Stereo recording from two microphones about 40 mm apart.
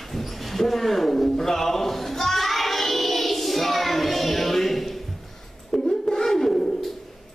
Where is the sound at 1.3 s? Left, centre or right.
Centre.